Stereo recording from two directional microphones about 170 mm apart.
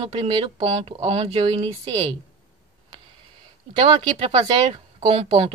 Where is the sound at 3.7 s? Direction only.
30° right (ahead or behind).